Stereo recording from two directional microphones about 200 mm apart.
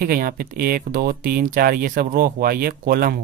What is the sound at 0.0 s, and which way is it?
Speech, 50° right (ahead or behind).